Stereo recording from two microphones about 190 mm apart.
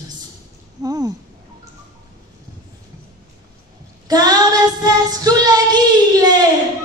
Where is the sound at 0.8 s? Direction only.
20° right (ahead or behind).